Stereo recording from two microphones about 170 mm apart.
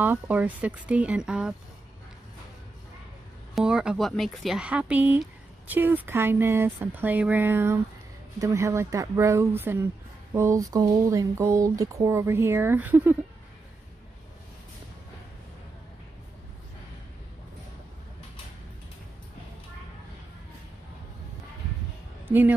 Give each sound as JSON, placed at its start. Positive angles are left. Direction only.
{"t": 0.0, "sound": "speech", "side_deg": -10}
{"t": 3.5, "sound": "speech", "side_deg": -5}